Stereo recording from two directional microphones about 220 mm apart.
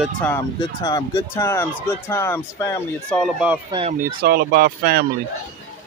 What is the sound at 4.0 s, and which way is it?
Speech, 45° right (ahead or behind).